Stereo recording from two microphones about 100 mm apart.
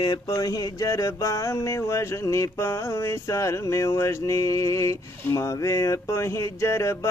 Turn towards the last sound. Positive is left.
turn(degrees=30)  # may be behind; listen again after turning